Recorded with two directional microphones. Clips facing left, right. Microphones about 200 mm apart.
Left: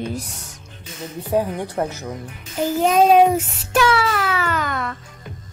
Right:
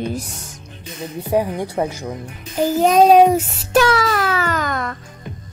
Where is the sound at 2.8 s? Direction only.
40° right (ahead or behind).